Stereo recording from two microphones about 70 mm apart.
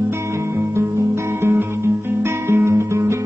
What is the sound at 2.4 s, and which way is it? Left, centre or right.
Guitar, right.